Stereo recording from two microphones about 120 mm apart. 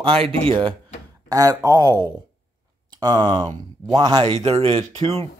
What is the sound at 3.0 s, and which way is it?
Speech, 35° right (ahead or behind).